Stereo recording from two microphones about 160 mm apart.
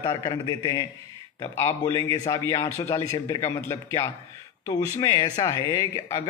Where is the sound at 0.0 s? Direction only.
25° left (ahead or behind).